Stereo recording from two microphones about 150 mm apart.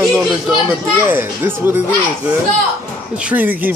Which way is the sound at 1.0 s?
15° right (ahead or behind).